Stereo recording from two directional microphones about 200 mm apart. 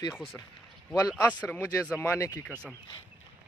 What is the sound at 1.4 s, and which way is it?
Speech, 10° left (ahead or behind).